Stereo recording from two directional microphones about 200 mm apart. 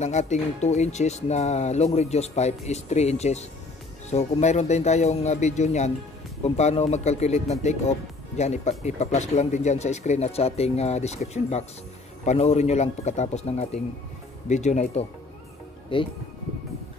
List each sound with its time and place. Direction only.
0.0 s speech: 35° left (ahead or behind)
15.9 s speech: 25° left (ahead or behind)